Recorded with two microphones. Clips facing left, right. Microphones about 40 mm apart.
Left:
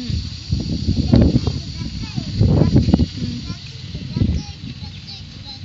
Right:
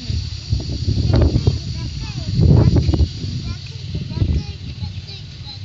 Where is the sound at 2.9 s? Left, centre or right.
Left.